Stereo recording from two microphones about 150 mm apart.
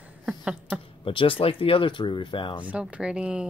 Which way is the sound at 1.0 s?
35° left (ahead or behind).